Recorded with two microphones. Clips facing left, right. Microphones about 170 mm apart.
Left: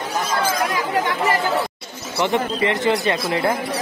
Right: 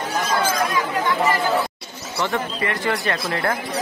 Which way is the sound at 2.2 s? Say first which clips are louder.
Left 4 dB; 20° left (ahead or behind).